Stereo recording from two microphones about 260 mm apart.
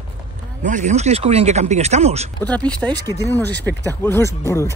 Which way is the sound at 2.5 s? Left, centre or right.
Centre.